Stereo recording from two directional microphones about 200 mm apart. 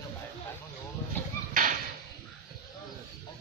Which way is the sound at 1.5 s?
40° right (ahead or behind).